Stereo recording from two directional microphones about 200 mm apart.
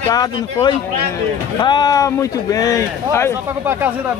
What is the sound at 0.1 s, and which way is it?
Speech, 20° left (ahead or behind).